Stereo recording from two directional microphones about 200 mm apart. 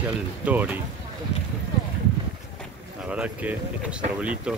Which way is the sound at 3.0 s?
5° right (ahead or behind).